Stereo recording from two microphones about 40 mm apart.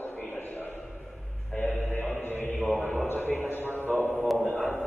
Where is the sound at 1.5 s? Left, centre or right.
Left.